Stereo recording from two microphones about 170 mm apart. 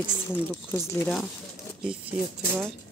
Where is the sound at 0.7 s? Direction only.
15° left (ahead or behind).